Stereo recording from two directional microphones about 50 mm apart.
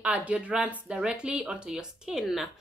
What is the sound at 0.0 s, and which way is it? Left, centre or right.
Speech, right.